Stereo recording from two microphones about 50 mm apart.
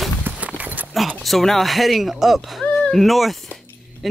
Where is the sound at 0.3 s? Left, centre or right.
Right.